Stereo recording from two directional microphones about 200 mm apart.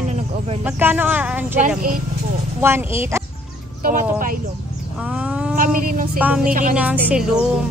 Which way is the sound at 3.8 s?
40° right (ahead or behind).